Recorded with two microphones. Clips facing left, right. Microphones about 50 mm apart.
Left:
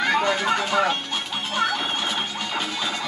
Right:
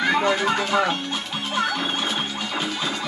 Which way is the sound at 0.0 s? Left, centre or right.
Centre.